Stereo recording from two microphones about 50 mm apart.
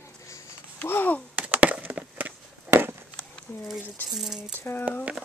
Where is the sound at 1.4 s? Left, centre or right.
Right.